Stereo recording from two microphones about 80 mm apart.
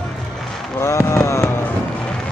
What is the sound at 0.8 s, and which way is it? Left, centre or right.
Fireworks, left.